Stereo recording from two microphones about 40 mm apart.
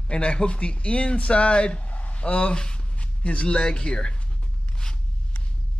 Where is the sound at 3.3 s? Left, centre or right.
Left.